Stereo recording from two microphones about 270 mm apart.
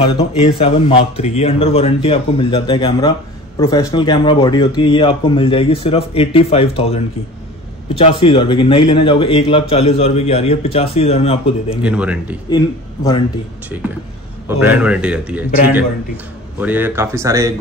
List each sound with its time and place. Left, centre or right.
0.0 s speech: left
8.0 s speech: centre
11.7 s a man's voice: centre
12.4 s a man's voice: centre
14.6 s a man's voice: centre